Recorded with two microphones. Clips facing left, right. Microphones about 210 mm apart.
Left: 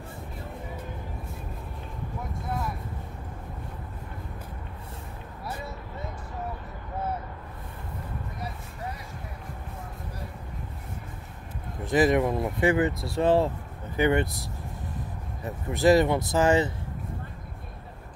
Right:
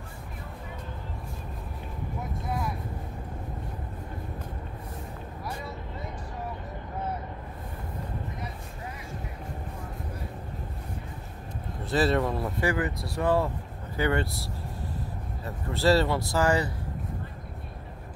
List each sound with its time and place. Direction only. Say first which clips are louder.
11.8 s speech: left 3 dB; 15° left (ahead or behind)